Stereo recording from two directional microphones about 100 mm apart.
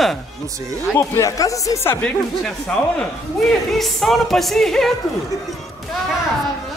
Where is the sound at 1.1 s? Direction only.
35° left (ahead or behind).